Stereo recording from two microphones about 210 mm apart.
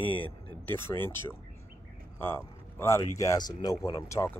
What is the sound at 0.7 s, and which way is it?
Speech, 10° left (ahead or behind).